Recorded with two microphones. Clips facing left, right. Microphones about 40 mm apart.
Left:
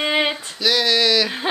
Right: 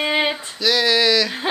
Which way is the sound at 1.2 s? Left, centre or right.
Centre.